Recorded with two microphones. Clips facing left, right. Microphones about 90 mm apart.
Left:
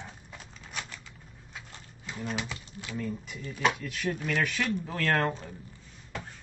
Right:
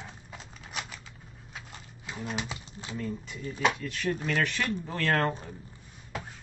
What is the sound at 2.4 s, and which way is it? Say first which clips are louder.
Typing: even; 25° right (ahead or behind).